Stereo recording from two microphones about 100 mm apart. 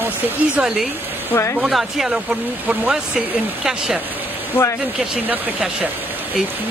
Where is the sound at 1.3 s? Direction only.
20° left (ahead or behind).